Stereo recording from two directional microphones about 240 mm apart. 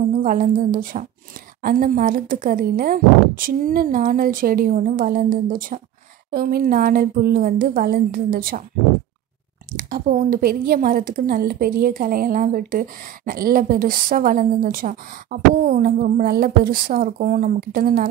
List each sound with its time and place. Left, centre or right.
0.2 s a woman's voice: right
9.7 s a woman's voice: right